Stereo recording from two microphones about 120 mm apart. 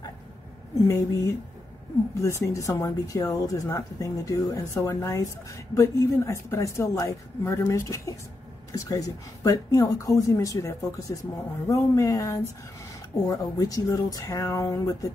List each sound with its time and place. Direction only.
0.8 s speech: 25° left (ahead or behind)